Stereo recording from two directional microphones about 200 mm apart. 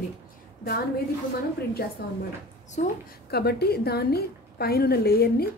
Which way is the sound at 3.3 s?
50° left (ahead or behind).